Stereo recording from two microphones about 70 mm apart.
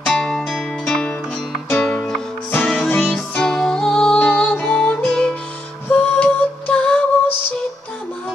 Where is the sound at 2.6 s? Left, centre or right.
Centre.